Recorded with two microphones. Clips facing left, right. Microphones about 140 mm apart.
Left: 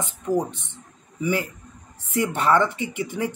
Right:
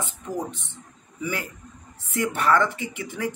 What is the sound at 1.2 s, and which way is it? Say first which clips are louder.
Speech: left 6 dB; 20° left (ahead or behind).